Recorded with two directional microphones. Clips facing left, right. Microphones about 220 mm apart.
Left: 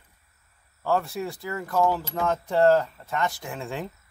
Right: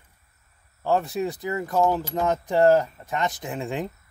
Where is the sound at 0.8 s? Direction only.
20° right (ahead or behind).